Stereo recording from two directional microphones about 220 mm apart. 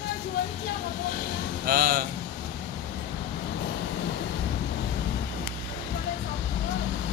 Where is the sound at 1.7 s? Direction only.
40° right (ahead or behind).